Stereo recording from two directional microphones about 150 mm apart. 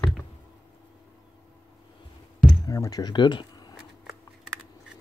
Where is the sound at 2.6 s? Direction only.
25° left (ahead or behind).